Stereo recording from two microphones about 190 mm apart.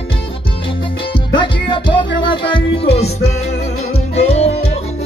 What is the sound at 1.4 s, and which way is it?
Music, 25° left (ahead or behind).